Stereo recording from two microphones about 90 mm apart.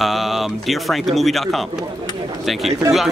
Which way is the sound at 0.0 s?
Centre (ahead or behind).